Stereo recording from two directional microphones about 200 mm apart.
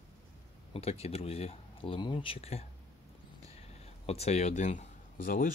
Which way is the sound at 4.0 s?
30° left (ahead or behind).